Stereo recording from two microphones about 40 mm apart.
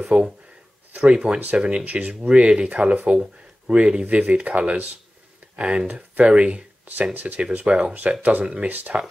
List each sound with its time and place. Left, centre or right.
0.1 s speech: right
0.9 s speech: right
1.9 s speech: right
2.2 s speech: right
2.7 s speech: right
3.6 s speech: right
5.6 s speech: right
5.9 s speech: right
7.2 s speech: right
7.6 s speech: right